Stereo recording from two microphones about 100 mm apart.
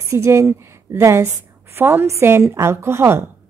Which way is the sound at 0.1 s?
30° right (ahead or behind).